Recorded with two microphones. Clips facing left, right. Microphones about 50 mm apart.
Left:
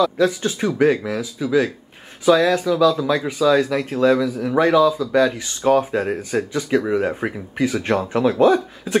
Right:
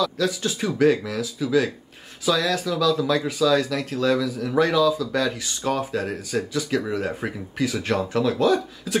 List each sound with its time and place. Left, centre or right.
0.0 s speech: left
5.8 s speech: left